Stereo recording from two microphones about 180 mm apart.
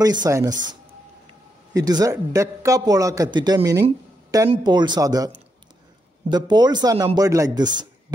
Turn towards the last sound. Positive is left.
turn(degrees=-25)  # may be behind; listen again after turning